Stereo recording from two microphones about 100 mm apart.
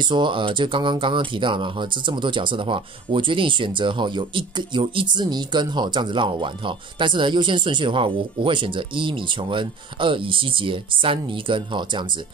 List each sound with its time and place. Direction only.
0.0 s speech: 50° right (ahead or behind)